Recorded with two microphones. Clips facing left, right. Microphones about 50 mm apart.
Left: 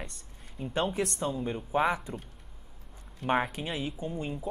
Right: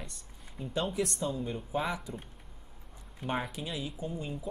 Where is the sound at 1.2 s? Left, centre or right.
Left.